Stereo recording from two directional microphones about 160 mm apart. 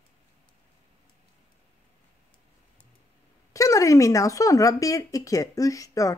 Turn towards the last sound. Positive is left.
turn(degrees=20)  # may be behind; listen again after turning